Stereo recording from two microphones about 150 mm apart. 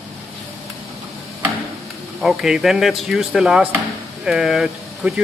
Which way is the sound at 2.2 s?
Centre (ahead or behind).